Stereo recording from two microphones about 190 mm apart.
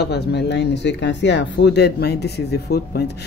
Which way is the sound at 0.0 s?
60° left (ahead or behind).